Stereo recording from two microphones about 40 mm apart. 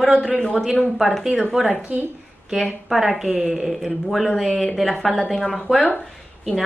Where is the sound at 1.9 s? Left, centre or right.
Right.